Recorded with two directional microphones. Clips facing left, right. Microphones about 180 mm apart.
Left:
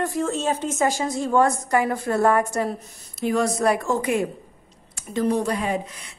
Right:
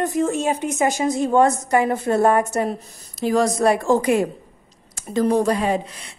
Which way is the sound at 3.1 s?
35° right (ahead or behind).